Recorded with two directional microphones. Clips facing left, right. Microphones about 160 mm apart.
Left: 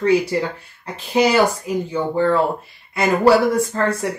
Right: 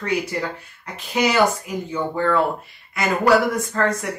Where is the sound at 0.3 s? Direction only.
30° left (ahead or behind).